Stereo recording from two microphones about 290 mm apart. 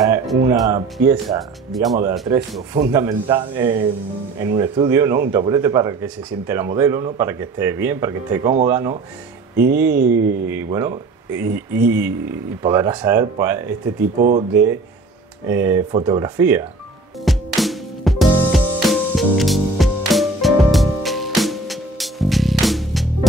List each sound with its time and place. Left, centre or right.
0.1 s speech: centre
14.2 s speech: right
15.4 s speech: centre
17.2 s music: centre